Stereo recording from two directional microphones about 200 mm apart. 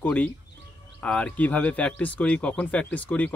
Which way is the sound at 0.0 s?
10° left (ahead or behind).